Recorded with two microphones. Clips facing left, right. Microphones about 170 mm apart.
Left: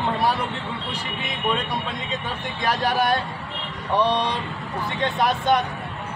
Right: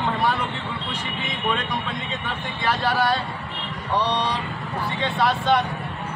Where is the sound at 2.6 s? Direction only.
45° left (ahead or behind).